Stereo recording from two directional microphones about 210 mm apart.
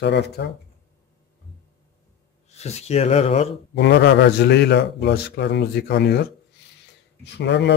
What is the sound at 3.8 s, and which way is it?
Speech, 55° left (ahead or behind).